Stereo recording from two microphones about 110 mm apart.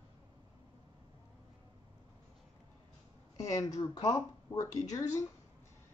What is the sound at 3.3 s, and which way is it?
Speech, 30° left (ahead or behind).